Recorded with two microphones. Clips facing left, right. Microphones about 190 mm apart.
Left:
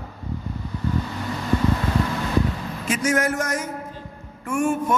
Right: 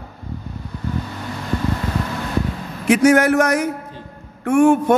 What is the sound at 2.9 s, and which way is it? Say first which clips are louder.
A man's voice: right 9 dB; 65° right (ahead or behind).